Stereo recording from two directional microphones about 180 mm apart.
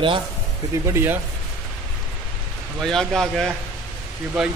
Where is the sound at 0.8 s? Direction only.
15° right (ahead or behind).